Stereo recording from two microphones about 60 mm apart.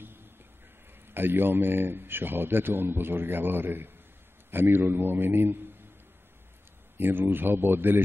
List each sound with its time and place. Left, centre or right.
1.0 s speech: right
7.0 s speech: right